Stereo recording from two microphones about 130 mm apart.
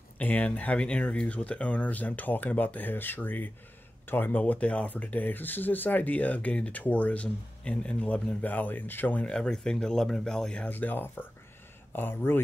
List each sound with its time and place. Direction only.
0.2 s speech: 10° left (ahead or behind)